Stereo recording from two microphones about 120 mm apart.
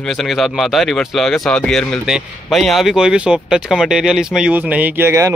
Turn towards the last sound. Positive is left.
turn(degrees=-25)  # may be behind; listen again after turning